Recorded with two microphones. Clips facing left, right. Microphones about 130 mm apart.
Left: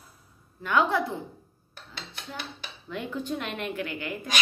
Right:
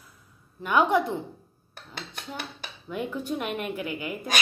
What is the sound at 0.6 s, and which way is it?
Speech, 15° right (ahead or behind).